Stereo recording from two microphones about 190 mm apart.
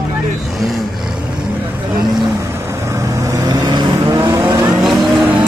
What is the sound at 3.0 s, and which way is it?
Vehicle, 15° right (ahead or behind).